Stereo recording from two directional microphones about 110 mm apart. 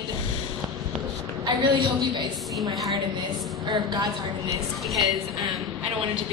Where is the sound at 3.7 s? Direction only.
40° right (ahead or behind).